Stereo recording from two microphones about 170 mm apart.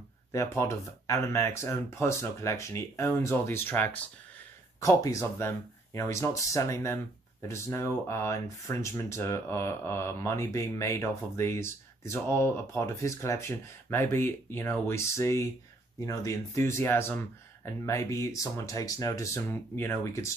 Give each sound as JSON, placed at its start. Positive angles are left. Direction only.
{"t": 0.3, "sound": "speech", "side_deg": 15}